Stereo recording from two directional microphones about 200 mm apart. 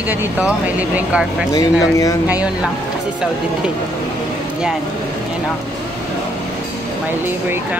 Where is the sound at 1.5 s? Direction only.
15° left (ahead or behind).